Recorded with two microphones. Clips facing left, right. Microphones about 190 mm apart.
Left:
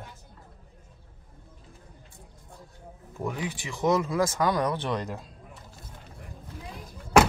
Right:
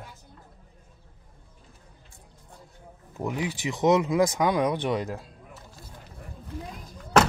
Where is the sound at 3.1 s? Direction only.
20° right (ahead or behind).